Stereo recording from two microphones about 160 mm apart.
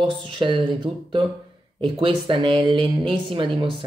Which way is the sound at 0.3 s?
30° right (ahead or behind).